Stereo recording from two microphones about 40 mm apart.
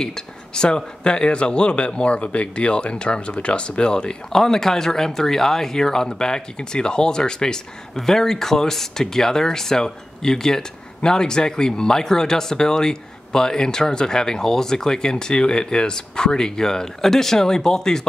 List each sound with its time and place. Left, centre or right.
0.0 s speech: centre
4.3 s speech: centre